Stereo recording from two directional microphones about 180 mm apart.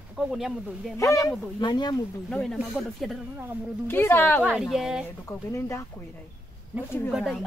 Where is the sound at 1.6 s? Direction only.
25° left (ahead or behind).